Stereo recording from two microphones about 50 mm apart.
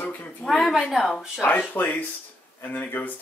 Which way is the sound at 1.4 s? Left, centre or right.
Left.